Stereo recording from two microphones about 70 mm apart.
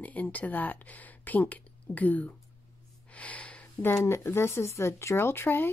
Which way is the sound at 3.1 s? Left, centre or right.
Centre.